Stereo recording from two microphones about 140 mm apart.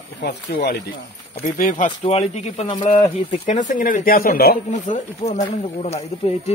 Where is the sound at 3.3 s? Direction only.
60° left (ahead or behind).